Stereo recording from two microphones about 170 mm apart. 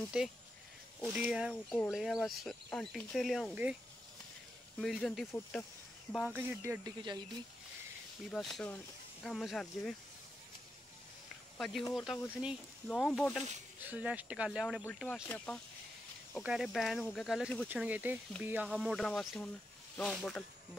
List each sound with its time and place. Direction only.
1.0 s speech: 5° right (ahead or behind)
4.7 s speech: centre (ahead or behind)
6.1 s speech: 5° right (ahead or behind)
6.6 s speech: 20° right (ahead or behind)
8.3 s speech: centre (ahead or behind)
11.5 s speech: centre (ahead or behind)
17.6 s speech: 10° right (ahead or behind)